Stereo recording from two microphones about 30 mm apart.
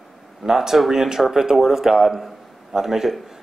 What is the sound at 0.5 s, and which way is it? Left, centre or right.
Speech, centre.